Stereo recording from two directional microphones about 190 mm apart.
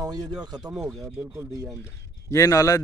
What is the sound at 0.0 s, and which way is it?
Speech, 20° right (ahead or behind).